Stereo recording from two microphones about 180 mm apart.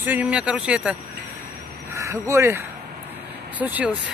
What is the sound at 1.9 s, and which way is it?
Speech, 15° right (ahead or behind).